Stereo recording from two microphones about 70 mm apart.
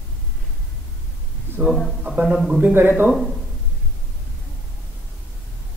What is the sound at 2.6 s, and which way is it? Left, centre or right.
Speech, right.